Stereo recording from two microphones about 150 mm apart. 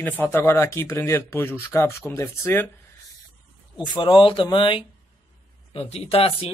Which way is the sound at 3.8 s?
30° left (ahead or behind).